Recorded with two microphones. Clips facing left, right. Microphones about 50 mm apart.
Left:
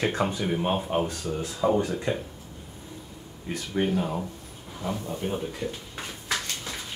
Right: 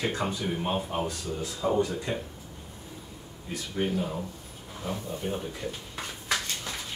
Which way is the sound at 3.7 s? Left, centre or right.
Centre.